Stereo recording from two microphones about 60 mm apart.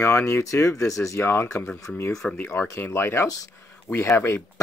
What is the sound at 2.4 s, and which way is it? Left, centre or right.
Speech, left.